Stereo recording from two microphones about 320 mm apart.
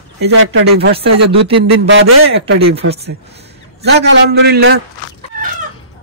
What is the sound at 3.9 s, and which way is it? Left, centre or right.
Speech, right.